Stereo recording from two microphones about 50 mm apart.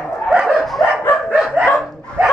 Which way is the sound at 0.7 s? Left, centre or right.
Centre.